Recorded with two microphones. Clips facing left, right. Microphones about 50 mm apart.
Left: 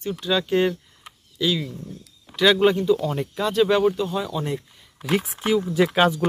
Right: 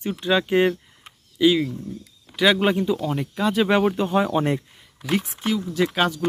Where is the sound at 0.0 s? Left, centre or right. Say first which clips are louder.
Right 2 dB; right.